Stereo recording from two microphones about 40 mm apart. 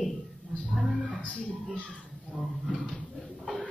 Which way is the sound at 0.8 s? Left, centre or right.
Centre.